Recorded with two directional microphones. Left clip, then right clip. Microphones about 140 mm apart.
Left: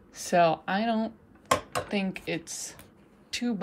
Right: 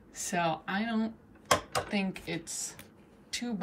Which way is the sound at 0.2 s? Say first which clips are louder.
Left 8 dB; 25° left (ahead or behind).